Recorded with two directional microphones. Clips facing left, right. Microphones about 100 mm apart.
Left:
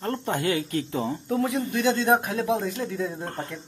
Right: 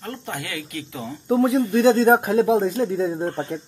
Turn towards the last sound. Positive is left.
turn(degrees=-30)  # may be behind; listen again after turning